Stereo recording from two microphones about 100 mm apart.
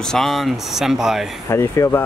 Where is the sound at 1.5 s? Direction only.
30° left (ahead or behind).